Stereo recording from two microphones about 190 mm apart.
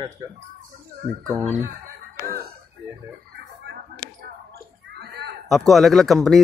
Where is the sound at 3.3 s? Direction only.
60° right (ahead or behind).